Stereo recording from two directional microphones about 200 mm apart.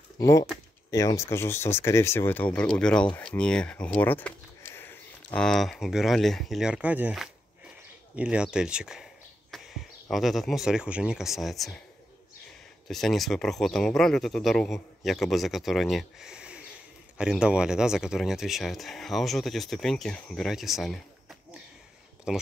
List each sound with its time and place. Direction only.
0.2 s speech: 15° left (ahead or behind); by 11.8 s centre (ahead or behind)
12.8 s speech: centre (ahead or behind)